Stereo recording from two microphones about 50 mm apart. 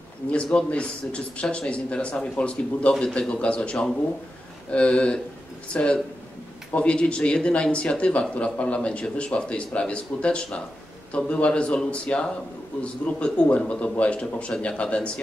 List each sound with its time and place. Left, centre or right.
0.3 s speech: left